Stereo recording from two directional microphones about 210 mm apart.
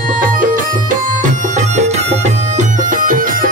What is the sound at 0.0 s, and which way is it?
Music, 40° right (ahead or behind).